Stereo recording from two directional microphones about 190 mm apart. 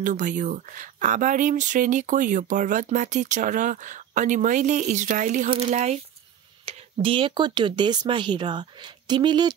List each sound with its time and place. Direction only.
0.0 s speech: 40° right (ahead or behind); by 9.5 s 25° right (ahead or behind)